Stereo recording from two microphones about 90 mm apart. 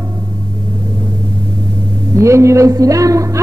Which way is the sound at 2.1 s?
35° right (ahead or behind).